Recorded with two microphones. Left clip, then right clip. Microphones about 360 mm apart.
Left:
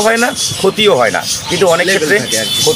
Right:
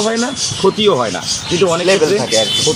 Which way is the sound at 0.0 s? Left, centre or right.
Left.